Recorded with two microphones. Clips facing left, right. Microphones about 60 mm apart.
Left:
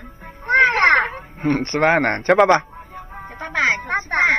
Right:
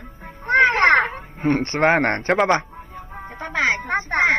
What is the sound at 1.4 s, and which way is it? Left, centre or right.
Speech, centre.